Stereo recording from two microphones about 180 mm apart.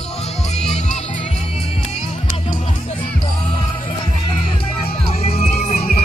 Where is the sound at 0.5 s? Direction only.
35° left (ahead or behind).